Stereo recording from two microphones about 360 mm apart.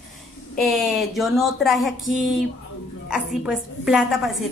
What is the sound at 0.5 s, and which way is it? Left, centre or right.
A woman's voice, centre.